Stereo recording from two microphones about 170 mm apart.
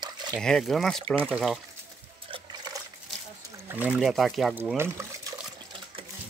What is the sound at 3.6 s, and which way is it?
Speech, 10° right (ahead or behind).